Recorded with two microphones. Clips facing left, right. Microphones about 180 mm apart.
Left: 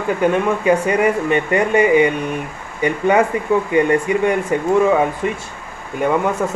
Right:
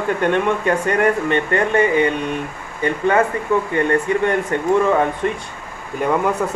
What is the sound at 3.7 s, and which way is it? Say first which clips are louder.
Speech: left 4 dB; 10° left (ahead or behind).